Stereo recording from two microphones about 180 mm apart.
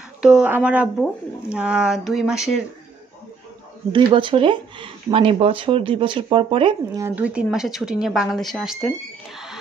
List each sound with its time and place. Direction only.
0.2 s speech: 5° right (ahead or behind)
3.9 s speech: 30° right (ahead or behind)
7.0 s speech: 10° right (ahead or behind)